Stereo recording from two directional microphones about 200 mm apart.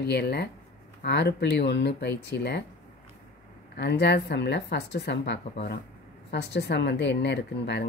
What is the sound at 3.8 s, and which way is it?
Speech, 55° left (ahead or behind).